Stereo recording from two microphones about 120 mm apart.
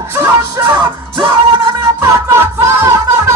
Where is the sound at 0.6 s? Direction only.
25° right (ahead or behind).